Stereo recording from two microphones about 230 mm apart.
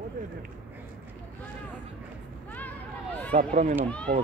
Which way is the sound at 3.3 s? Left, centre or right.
Right.